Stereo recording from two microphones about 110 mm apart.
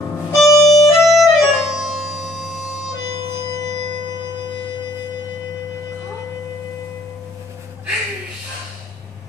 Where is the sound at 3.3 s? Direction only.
90° right.